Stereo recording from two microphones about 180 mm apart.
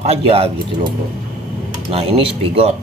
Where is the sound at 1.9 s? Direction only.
30° right (ahead or behind).